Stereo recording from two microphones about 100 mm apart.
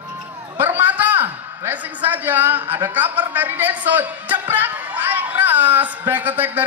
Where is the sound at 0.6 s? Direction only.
20° right (ahead or behind).